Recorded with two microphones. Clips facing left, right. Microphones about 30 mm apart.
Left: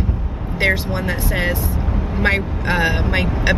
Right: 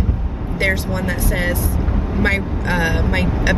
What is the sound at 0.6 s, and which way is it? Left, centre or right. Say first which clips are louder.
Speech: left 1 dB; centre.